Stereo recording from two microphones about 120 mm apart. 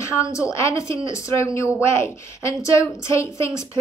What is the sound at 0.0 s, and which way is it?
A woman's voice, 25° left (ahead or behind).